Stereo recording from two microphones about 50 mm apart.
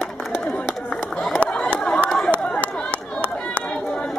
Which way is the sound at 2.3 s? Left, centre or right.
Left.